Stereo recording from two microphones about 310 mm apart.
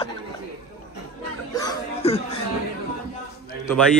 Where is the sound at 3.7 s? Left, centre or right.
Centre.